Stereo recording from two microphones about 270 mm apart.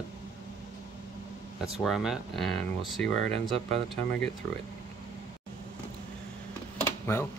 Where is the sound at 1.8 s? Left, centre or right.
Centre.